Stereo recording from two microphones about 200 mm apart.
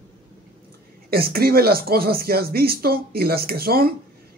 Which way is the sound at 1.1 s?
50° right (ahead or behind).